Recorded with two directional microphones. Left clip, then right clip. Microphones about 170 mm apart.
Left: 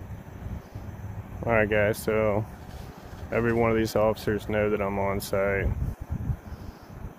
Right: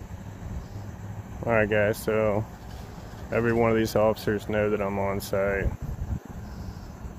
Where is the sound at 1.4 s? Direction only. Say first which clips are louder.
Even; 5° left (ahead or behind).